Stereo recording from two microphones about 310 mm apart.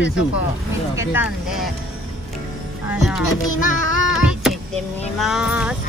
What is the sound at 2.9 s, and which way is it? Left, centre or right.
Speech, centre.